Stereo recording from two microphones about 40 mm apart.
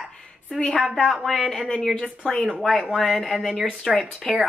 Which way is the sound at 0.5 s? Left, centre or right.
Centre.